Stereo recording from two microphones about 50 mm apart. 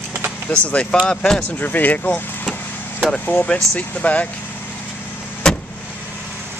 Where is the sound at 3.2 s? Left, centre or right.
Left.